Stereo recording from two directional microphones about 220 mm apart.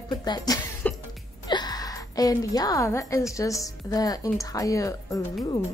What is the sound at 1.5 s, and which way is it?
A woman's voice, 20° left (ahead or behind).